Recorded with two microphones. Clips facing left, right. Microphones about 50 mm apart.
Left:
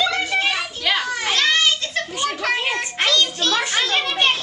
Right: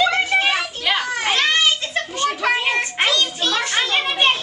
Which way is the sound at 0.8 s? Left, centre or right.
Centre.